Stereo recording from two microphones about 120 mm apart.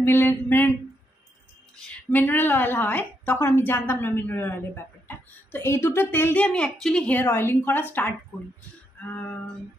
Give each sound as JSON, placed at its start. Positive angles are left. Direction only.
{"t": 0.0, "sound": "a sound", "side_deg": 20}
{"t": 1.8, "sound": "a woman's voice", "side_deg": 15}
{"t": 6.4, "sound": "a woman's voice", "side_deg": 10}
{"t": 7.2, "sound": "a woman's voice", "side_deg": 20}